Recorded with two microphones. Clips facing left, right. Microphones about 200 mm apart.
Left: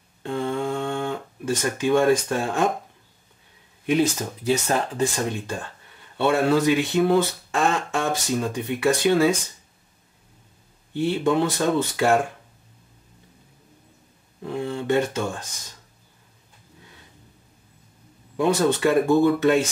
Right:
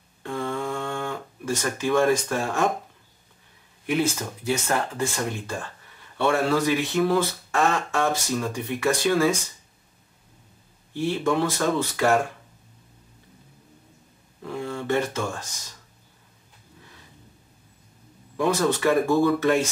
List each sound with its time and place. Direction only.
0.2 s a sound: 20° left (ahead or behind)
3.8 s speech: 20° left (ahead or behind)
10.9 s speech: 20° left (ahead or behind)
14.4 s speech: 20° left (ahead or behind)
18.3 s speech: 20° left (ahead or behind)